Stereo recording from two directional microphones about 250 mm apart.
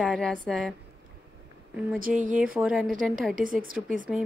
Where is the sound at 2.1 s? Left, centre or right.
Centre.